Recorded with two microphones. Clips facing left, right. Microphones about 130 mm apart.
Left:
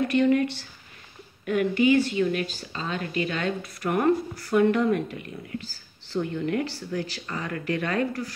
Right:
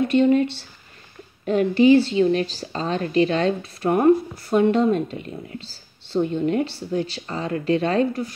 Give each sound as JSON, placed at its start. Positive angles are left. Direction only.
{"t": 0.1, "sound": "speech", "side_deg": -25}